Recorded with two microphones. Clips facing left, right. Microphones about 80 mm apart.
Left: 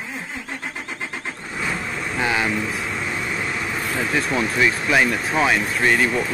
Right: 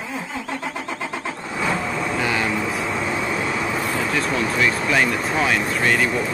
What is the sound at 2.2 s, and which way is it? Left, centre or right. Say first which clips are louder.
Vehicle: left 3 dB; centre.